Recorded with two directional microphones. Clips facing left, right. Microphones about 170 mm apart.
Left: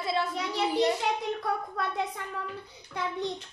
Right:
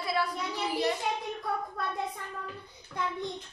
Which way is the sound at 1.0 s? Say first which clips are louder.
Left 3 dB; 90° left.